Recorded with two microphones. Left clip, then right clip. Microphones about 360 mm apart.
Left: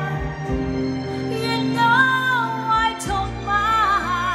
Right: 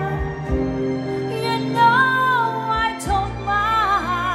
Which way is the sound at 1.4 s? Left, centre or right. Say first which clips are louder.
Right 2 dB; centre.